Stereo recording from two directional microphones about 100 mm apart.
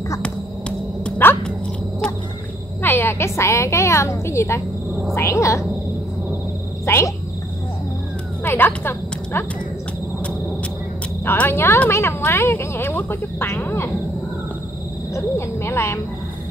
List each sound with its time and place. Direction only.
0.2 s a sound: 10° left (ahead or behind)
2.8 s a woman's voice: 20° left (ahead or behind)
6.9 s speech: 30° left (ahead or behind)
8.5 s speech: 20° left (ahead or behind)
11.2 s speech: 20° left (ahead or behind)
15.1 s speech: 25° left (ahead or behind)